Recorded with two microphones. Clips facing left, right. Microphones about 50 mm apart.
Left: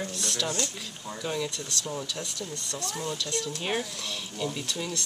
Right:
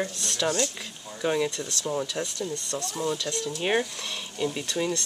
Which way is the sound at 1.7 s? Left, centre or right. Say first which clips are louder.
Right 3 dB; centre.